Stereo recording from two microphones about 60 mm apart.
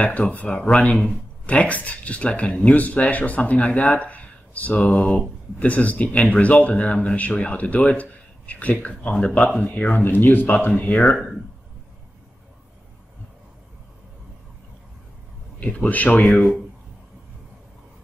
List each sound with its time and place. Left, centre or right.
0.3 s speech: left
15.6 s speech: left